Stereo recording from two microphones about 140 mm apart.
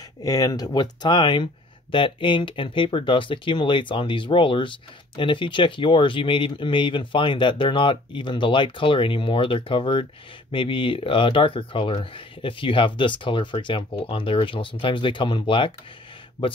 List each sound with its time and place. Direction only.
0.2 s speech: 25° left (ahead or behind)